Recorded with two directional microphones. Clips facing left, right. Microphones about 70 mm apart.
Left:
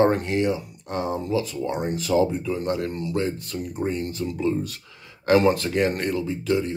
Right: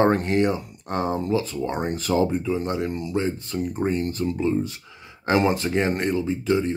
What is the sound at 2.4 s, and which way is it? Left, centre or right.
Speech, right.